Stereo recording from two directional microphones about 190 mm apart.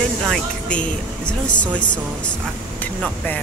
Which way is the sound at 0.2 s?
5° left (ahead or behind).